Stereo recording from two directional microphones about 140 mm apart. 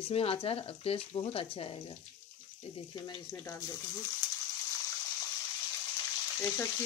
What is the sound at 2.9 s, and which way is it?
Speech, 30° left (ahead or behind).